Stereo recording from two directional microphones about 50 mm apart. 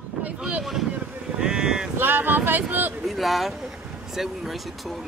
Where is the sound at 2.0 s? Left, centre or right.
Right.